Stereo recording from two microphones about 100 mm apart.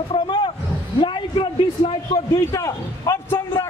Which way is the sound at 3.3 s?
30° left (ahead or behind).